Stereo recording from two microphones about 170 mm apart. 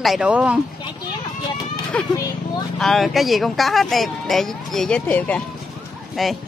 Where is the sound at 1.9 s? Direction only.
5° left (ahead or behind).